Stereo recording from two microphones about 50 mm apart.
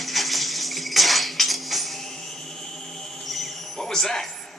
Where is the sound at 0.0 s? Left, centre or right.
Centre.